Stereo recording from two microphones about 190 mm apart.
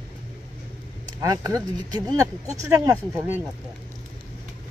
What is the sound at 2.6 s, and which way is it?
Speech, 20° right (ahead or behind).